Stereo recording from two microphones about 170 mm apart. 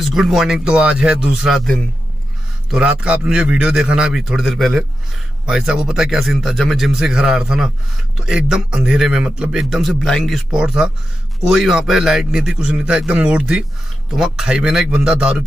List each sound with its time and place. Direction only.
0.0 s a man's voice: centre (ahead or behind)